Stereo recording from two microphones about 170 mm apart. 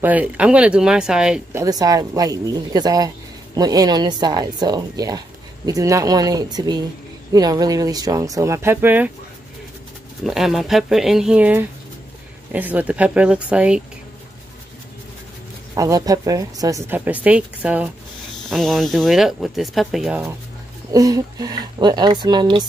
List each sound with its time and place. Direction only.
0.0 s a woman's voice: 10° right (ahead or behind)
1.6 s speech: 20° right (ahead or behind)
10.2 s a woman's voice: centre (ahead or behind)
15.7 s a woman's voice: 20° right (ahead or behind)
20.9 s speech: 20° right (ahead or behind)